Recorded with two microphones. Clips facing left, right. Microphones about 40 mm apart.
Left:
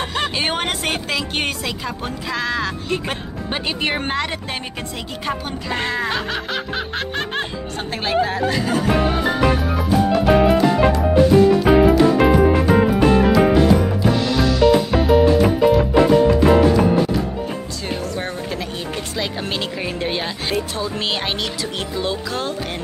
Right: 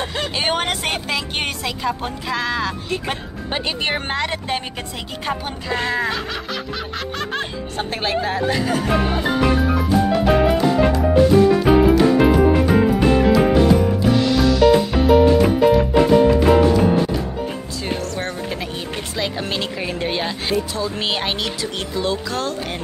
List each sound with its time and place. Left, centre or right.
0.0 s a sound: left
0.4 s speech: centre
6.0 s snicker: left
7.7 s speech: centre
9.4 s music: centre
18.0 s speech: centre